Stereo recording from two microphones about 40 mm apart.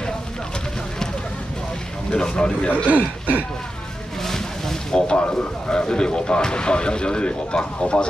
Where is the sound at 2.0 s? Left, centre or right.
Left.